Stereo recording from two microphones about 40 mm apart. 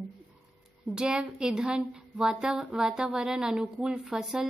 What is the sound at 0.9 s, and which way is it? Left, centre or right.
A woman's voice, right.